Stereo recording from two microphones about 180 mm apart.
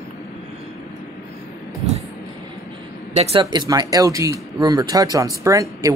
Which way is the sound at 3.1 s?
35° right (ahead or behind).